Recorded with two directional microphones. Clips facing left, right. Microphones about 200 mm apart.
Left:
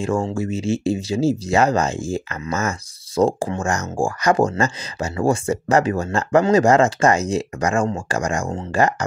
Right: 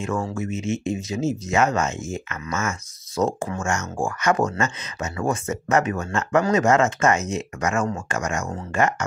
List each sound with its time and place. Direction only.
0.0 s speech: 30° left (ahead or behind)